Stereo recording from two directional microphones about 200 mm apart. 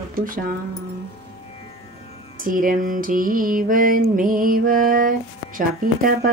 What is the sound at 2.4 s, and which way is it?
Mantra, 45° right (ahead or behind).